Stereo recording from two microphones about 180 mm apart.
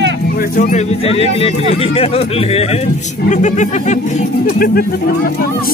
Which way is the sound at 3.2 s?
45° left (ahead or behind).